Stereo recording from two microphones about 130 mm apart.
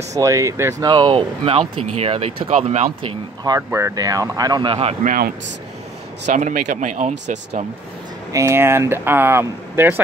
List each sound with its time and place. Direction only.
0.2 s speech: 25° right (ahead or behind)
0.8 s speech: 35° right (ahead or behind); by 2.9 s 60° right (ahead or behind)
3.4 s speech: 25° right (ahead or behind)
6.2 s speech: 75° right (ahead or behind)
8.3 s speech: 20° right (ahead or behind)